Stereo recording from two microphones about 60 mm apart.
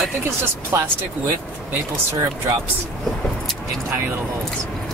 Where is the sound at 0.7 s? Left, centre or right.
Right.